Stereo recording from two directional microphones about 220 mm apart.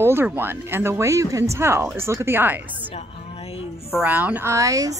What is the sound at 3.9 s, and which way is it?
Speech, 5° right (ahead or behind).